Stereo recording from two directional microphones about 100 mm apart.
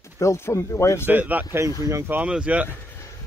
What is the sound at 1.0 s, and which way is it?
Speech, 15° right (ahead or behind).